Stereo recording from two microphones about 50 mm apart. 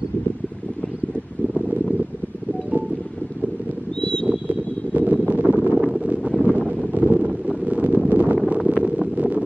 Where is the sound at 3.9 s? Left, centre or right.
Centre.